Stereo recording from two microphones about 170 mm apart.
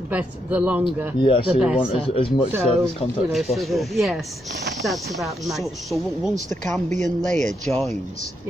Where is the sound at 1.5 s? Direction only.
5° right (ahead or behind).